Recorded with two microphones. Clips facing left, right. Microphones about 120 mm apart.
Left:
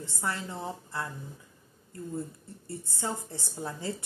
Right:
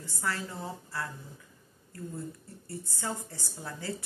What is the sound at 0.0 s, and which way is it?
A woman's voice, 20° left (ahead or behind).